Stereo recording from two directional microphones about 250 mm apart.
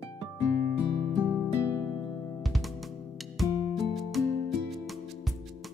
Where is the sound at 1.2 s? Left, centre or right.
Centre.